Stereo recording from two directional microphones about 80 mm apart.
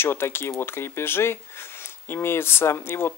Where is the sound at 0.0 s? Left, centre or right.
Left.